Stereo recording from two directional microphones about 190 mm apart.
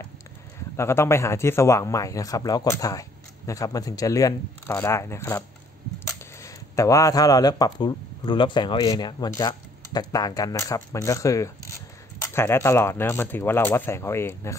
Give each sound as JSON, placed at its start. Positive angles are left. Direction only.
{"t": 0.7, "sound": "speech", "side_deg": 15}